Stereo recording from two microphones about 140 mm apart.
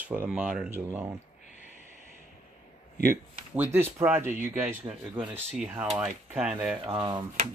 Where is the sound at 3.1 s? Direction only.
15° right (ahead or behind).